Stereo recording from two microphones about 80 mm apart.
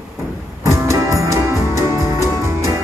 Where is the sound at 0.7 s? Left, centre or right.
Right.